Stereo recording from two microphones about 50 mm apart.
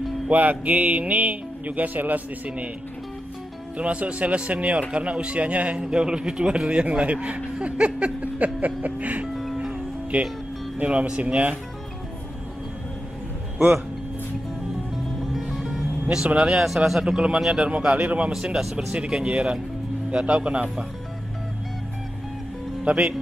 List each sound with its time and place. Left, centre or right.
0.3 s speech: right
3.7 s speech: right
9.3 s music: centre
10.1 s speech: right
15.5 s music: centre
16.3 s speech: centre
17.0 s speech: right
18.6 s speech: centre
18.9 s speech: right
22.8 s speech: centre